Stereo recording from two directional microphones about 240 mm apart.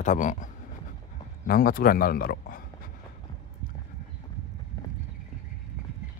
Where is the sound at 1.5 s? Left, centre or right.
Left.